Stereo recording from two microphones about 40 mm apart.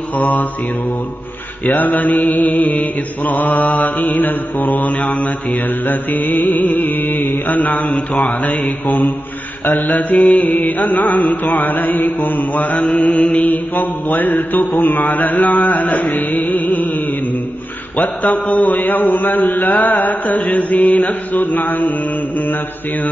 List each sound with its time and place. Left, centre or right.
0.2 s mantra: left
1.7 s mantra: left
5.9 s mantra: left
13.3 s mantra: left
14.8 s carnatic music: left
18.2 s mantra: left